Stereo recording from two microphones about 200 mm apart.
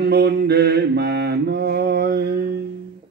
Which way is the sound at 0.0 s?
55° right (ahead or behind).